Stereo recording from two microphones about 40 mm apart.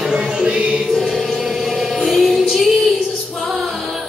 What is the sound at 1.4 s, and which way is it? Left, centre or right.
Music, centre.